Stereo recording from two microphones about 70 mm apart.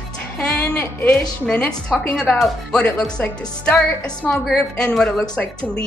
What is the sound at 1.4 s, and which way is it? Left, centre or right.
A woman's voice, centre.